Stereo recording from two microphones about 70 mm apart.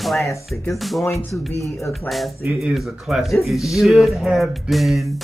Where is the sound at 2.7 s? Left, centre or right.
Centre.